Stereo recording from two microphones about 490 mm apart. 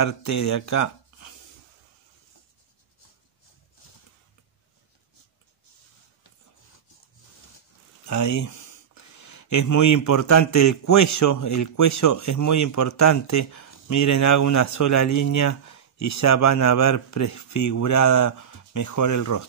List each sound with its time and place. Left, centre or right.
0.0 s speech: left
8.0 s speech: left